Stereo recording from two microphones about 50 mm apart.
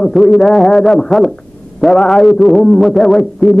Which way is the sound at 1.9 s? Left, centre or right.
Centre.